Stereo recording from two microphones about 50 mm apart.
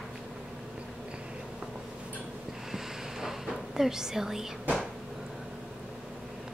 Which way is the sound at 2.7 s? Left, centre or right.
Centre.